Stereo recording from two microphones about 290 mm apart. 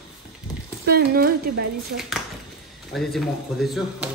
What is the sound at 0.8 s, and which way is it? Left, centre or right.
Speech, right.